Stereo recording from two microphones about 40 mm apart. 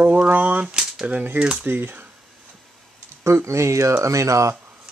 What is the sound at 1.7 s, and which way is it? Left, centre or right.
Speech, right.